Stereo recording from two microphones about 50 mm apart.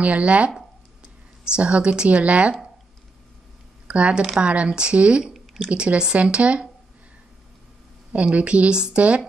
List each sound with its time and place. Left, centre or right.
0.0 s speech: right
3.8 s speech: right
5.2 s drip: centre
5.7 s speech: right
8.1 s speech: right